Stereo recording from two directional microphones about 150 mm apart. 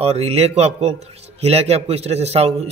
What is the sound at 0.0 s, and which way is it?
A man's voice, 45° right (ahead or behind).